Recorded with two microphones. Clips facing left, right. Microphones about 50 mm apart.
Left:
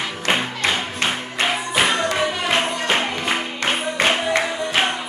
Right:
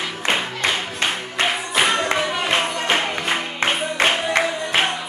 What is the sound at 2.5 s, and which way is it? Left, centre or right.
Music, centre.